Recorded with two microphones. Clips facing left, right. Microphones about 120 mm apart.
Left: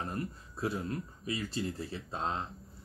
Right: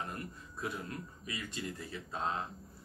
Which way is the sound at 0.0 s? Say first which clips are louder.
Left 5 dB; 30° left (ahead or behind).